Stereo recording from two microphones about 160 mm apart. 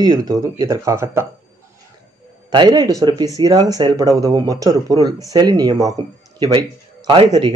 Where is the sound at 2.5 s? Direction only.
25° right (ahead or behind).